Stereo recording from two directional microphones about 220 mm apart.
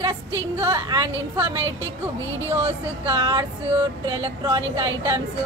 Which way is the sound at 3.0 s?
20° right (ahead or behind).